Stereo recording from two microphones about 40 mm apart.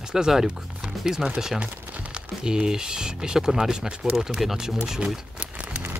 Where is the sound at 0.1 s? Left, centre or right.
Centre.